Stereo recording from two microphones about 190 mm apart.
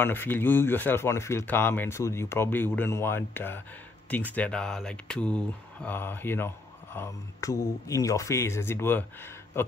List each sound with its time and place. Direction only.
0.0 s speech: 10° left (ahead or behind)